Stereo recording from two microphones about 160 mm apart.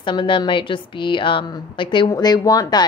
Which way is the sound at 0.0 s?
30° left (ahead or behind).